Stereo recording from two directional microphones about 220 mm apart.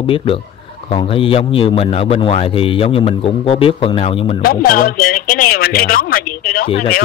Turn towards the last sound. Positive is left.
turn(degrees=40)  # may be behind; listen again after turning